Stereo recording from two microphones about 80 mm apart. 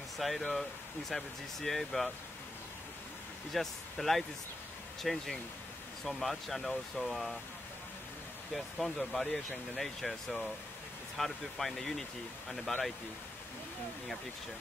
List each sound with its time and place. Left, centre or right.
0.2 s speech: centre
3.5 s speech: centre
8.5 s speech: centre